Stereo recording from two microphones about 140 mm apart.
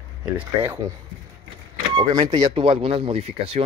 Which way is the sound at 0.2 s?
10° right (ahead or behind).